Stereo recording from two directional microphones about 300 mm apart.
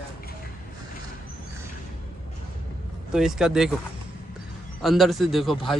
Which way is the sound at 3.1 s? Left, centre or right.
Centre.